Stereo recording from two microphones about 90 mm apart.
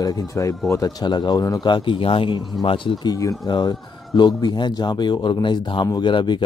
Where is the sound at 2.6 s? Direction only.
65° left (ahead or behind).